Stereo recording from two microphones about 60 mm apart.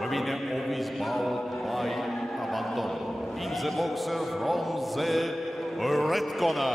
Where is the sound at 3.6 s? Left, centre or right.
Centre.